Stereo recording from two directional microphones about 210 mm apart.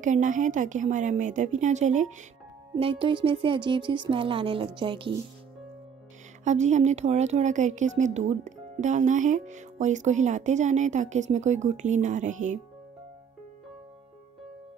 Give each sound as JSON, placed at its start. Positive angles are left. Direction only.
{"t": 0.0, "sound": "speech", "side_deg": -35}
{"t": 2.7, "sound": "speech", "side_deg": -25}
{"t": 6.4, "sound": "speech", "side_deg": -35}